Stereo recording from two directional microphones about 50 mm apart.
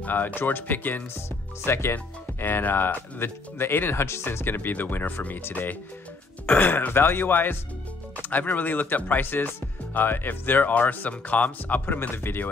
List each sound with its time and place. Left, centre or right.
0.0 s speech: left
1.7 s speech: left
2.4 s speech: left
11.8 s speech: left